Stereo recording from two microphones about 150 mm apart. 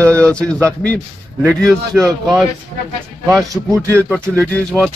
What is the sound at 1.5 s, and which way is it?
Speech, 5° left (ahead or behind).